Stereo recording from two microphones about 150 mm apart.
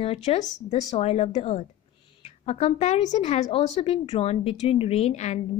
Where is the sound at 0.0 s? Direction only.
40° left (ahead or behind).